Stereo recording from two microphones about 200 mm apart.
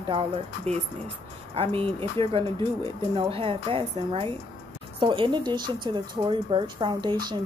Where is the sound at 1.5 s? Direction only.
30° right (ahead or behind).